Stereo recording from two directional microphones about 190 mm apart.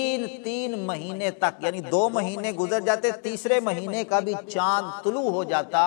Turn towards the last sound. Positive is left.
turn(degrees=10)  # may be behind; listen again after turning